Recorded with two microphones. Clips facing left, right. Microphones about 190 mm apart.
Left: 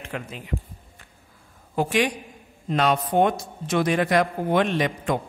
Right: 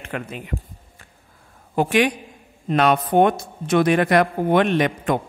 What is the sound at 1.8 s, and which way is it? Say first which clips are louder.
A man's voice: right 4 dB; 65° right (ahead or behind).